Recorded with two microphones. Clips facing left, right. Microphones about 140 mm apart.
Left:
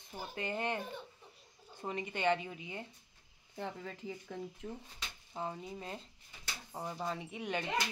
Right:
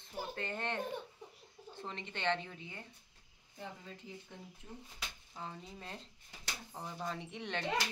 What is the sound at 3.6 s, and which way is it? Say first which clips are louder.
Speech: left 6 dB; 90° left.